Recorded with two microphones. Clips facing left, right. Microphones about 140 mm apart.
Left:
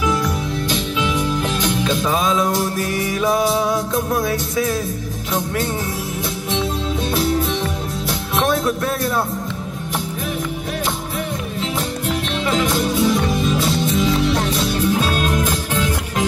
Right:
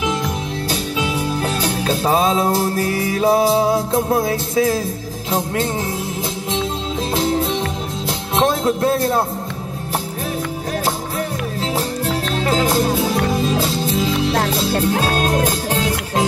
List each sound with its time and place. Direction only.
0.0 s music: 25° right (ahead or behind)
0.7 s music: 35° right (ahead or behind)
8.4 s a man's voice: 25° right (ahead or behind)
12.1 s music: 35° right (ahead or behind)